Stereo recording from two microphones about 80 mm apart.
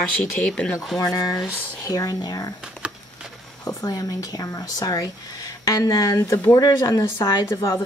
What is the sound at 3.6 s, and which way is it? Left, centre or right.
Speech, left.